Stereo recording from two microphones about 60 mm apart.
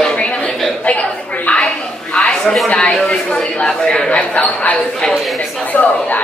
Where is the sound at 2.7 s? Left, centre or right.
Centre.